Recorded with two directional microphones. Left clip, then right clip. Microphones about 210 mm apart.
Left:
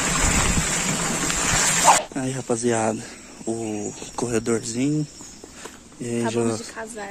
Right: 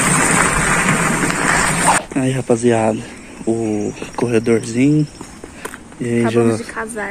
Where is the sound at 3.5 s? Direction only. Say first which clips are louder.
Right 9 dB; 10° left (ahead or behind).